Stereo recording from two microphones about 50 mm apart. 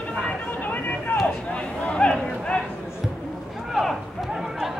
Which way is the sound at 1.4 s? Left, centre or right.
Left.